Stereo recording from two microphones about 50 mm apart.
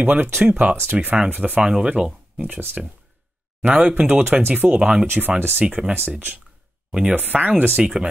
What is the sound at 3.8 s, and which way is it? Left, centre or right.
Speech, right.